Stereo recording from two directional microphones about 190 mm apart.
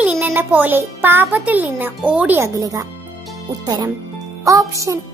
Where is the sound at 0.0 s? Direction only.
10° right (ahead or behind).